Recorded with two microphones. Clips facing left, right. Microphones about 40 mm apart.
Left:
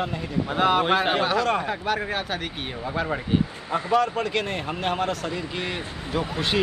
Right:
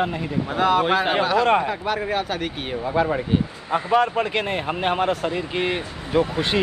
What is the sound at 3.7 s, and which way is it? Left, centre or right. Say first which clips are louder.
Speech: right 3 dB; right.